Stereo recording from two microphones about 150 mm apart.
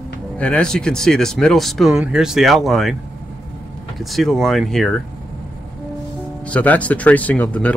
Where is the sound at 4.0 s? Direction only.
Centre (ahead or behind).